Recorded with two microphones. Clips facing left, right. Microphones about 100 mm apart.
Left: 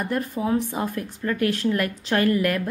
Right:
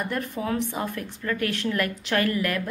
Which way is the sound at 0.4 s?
20° left (ahead or behind).